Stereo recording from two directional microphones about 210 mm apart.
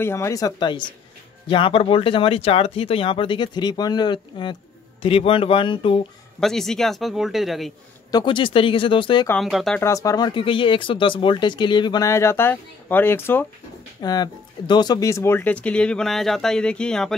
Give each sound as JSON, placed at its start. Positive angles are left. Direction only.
{"t": 0.0, "sound": "speech", "side_deg": 15}
{"t": 6.4, "sound": "speech", "side_deg": 0}
{"t": 8.1, "sound": "speech", "side_deg": 20}
{"t": 9.3, "sound": "speech", "side_deg": 0}
{"t": 9.8, "sound": "speech", "side_deg": 15}